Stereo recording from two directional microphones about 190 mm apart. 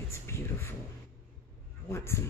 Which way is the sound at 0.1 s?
15° left (ahead or behind).